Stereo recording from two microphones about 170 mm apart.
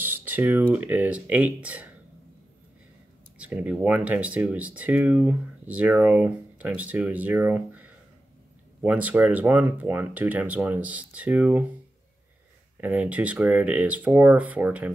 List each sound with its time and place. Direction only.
0.1 s speech: 10° right (ahead or behind)
3.3 s speech: 10° right (ahead or behind)
12.8 s speech: 10° right (ahead or behind)